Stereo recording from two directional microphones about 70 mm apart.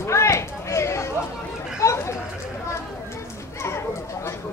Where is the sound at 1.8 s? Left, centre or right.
Left.